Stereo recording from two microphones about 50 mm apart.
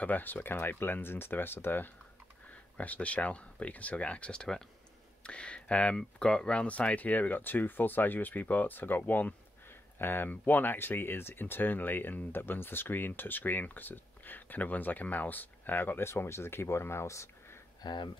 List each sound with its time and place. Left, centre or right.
0.0 s speech: left
2.5 s speech: left
16.1 s speech: left